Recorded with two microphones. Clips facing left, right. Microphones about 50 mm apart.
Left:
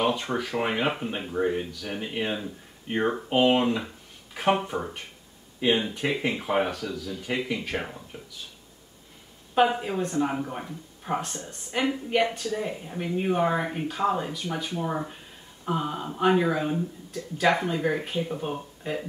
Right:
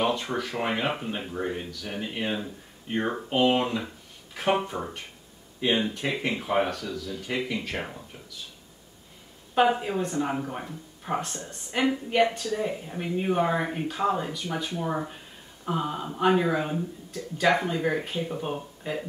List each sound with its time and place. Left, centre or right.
0.2 s speech: centre
5.8 s speech: centre
9.6 s speech: centre